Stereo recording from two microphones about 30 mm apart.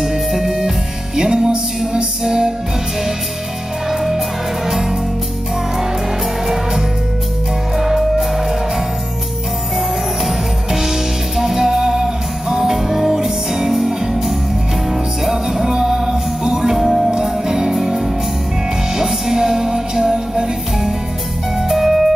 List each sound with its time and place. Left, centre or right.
0.3 s music: centre
3.9 s music: centre
6.4 s music: centre
9.8 s music: centre
15.6 s music: centre
17.1 s music: right
18.9 s music: centre